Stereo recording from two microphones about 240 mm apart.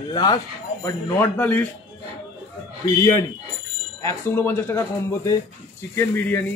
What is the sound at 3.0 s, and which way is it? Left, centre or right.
Speech, centre.